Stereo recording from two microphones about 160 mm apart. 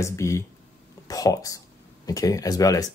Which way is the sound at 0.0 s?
20° left (ahead or behind).